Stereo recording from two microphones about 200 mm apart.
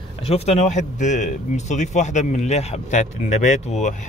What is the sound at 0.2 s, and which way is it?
Speech, 30° left (ahead or behind).